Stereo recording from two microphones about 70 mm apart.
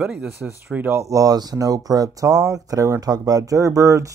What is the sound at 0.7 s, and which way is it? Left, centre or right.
Speech, right.